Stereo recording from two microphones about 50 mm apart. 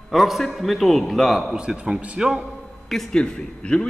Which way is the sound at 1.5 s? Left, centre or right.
Centre.